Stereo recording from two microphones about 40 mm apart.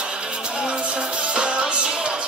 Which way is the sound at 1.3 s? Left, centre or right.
Right.